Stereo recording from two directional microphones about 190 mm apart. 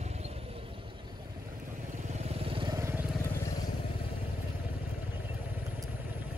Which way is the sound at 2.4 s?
25° right (ahead or behind).